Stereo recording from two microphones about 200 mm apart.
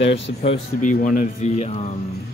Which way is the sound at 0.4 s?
35° left (ahead or behind).